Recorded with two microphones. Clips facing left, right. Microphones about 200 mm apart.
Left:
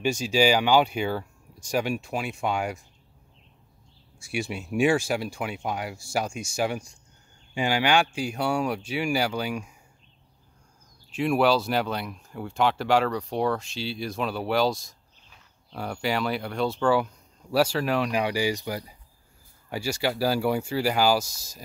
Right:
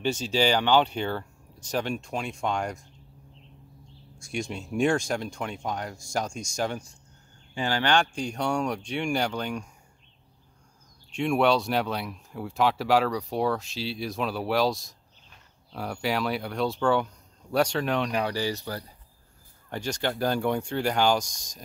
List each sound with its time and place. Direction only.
0.0 s speech: 10° left (ahead or behind)
4.2 s speech: 5° left (ahead or behind)
11.1 s speech: 5° left (ahead or behind)